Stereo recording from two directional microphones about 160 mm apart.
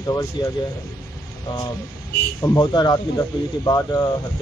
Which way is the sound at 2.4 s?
25° left (ahead or behind).